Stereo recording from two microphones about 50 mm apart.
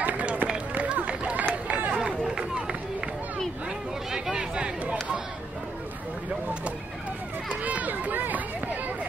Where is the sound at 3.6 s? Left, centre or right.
Centre.